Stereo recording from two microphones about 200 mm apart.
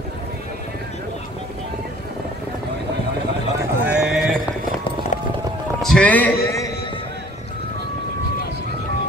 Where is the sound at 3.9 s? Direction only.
5° right (ahead or behind).